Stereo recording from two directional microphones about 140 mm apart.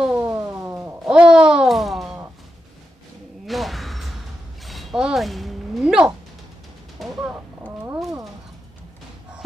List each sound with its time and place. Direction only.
0.0 s music: 10° right (ahead or behind)
0.3 s music: 20° right (ahead or behind)
1.0 s babbling: 5° right (ahead or behind)
3.4 s a sound: centre (ahead or behind)